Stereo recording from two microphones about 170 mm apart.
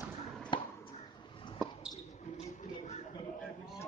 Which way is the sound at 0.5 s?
30° left (ahead or behind).